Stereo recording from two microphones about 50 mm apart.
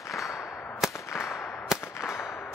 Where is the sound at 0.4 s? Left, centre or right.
Left.